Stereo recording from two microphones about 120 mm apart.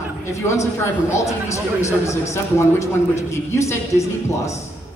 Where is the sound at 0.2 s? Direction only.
25° left (ahead or behind).